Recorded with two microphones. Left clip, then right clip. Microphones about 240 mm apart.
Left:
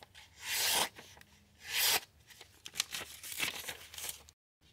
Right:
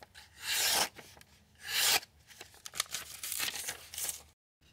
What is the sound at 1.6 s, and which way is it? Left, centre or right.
Filing, centre.